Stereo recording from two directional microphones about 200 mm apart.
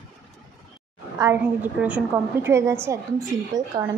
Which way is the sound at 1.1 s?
10° right (ahead or behind).